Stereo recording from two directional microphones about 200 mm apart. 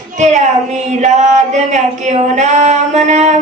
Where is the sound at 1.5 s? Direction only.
35° right (ahead or behind).